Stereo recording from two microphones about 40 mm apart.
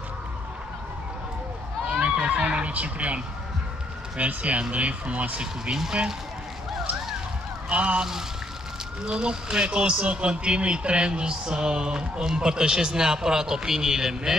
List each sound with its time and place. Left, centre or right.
1.9 s a sound: right
4.2 s speech: right
5.4 s a man's voice: centre
7.7 s a man's voice: right
9.0 s a man's voice: right